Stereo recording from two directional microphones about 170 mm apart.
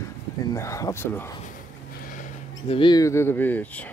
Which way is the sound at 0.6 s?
20° left (ahead or behind).